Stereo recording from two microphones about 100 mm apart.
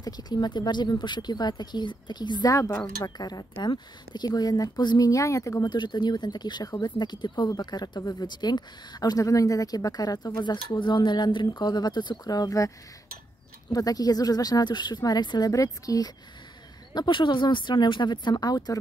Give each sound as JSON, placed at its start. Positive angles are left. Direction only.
{"t": 0.0, "sound": "speech", "side_deg": 45}
{"t": 2.5, "sound": "speech", "side_deg": 30}
{"t": 5.7, "sound": "speech", "side_deg": 50}
{"t": 16.9, "sound": "speech", "side_deg": 50}